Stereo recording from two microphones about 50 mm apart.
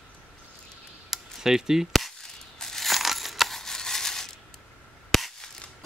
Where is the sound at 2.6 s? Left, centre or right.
Centre.